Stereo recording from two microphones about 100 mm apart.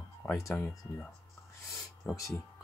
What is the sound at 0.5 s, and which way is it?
Speech, 20° left (ahead or behind).